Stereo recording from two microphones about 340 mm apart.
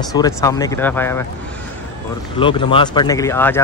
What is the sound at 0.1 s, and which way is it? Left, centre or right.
Speech, centre.